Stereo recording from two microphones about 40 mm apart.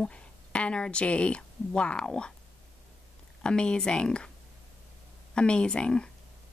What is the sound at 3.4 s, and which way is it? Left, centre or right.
Speech, left.